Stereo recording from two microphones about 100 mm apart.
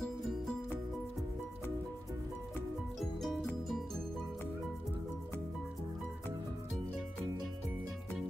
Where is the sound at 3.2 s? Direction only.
Centre (ahead or behind).